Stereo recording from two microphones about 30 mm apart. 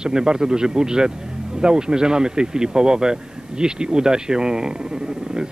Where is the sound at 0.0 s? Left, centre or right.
Right.